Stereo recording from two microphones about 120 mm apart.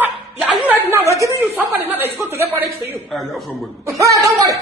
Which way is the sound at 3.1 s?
Centre (ahead or behind).